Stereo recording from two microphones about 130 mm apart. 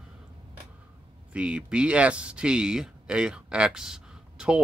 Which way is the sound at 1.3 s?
10° right (ahead or behind).